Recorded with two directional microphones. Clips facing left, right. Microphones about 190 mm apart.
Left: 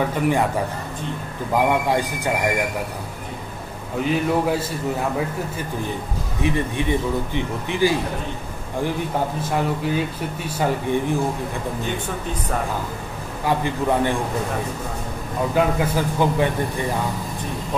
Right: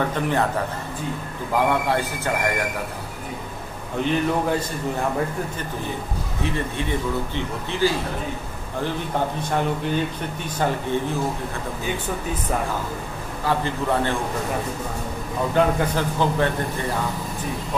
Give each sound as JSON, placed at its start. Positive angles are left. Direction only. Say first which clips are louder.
{"t": 0.0, "sound": "speech", "louder": "left 2 dB", "side_deg": 10}
{"t": 1.7, "sound": "speech", "louder": "left 2 dB", "side_deg": 15}
{"t": 4.0, "sound": "speech", "louder": "left 1 dB", "side_deg": 5}
{"t": 6.4, "sound": "speech", "louder": "left 4 dB", "side_deg": 15}
{"t": 9.4, "sound": "speech", "louder": "left 1 dB", "side_deg": 5}
{"t": 13.5, "sound": "speech", "louder": "left 2 dB", "side_deg": 15}
{"t": 15.5, "sound": "speech", "louder": "even", "side_deg": 5}